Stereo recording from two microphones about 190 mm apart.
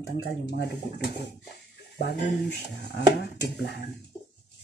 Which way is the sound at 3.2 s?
60° left (ahead or behind).